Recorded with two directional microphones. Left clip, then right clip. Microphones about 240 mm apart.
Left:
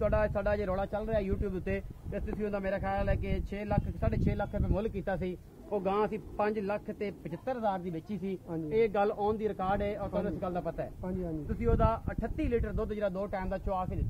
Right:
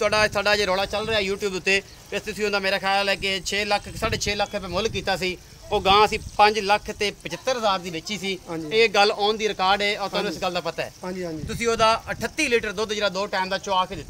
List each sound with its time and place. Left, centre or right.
0.0 s a man's voice: right